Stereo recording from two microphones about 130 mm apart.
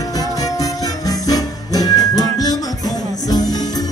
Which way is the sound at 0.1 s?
30° left (ahead or behind).